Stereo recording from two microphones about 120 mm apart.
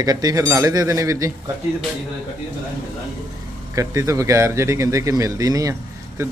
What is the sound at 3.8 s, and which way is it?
Speech, 25° right (ahead or behind).